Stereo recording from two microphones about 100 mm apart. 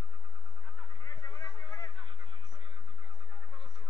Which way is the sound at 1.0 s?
30° left (ahead or behind).